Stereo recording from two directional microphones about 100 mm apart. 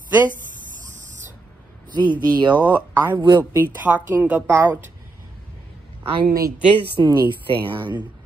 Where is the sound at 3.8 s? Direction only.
15° right (ahead or behind).